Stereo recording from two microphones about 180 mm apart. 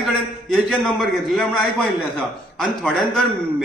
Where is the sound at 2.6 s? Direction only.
Centre (ahead or behind).